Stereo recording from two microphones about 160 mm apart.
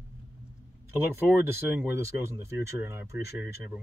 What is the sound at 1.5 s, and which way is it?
Speech, 15° right (ahead or behind).